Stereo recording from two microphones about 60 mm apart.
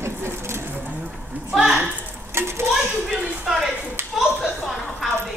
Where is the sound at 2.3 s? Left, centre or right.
Right.